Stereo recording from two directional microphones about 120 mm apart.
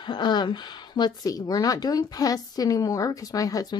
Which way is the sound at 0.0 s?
40° left (ahead or behind).